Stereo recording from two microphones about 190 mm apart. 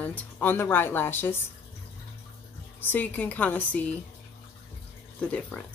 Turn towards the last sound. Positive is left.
turn(degrees=5)  # may be behind; listen again after turning